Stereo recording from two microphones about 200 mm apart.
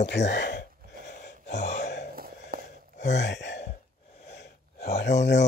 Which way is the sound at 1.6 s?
60° left (ahead or behind).